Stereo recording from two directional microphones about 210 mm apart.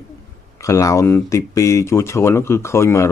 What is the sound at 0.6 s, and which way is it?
Speech, 15° left (ahead or behind).